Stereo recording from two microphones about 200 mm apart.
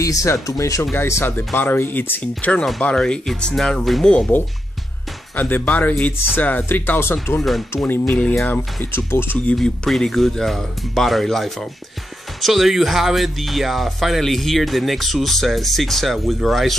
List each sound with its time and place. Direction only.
0.0 s speech: 15° left (ahead or behind); by 16.7 s centre (ahead or behind)